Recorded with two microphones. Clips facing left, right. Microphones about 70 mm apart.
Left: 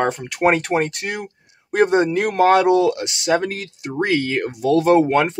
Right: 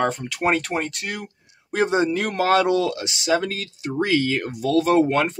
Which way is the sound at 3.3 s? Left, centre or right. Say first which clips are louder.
Left 2 dB; left.